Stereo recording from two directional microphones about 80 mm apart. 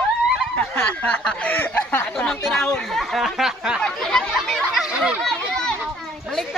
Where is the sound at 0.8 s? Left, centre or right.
Left.